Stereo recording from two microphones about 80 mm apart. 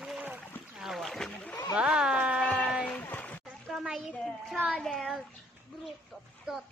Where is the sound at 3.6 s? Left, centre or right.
Centre.